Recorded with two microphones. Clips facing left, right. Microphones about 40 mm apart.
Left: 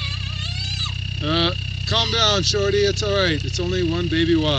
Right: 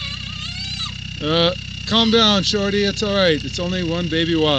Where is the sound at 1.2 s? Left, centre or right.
Right.